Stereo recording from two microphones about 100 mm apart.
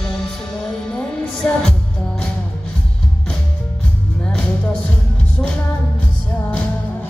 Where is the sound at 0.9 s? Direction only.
10° left (ahead or behind).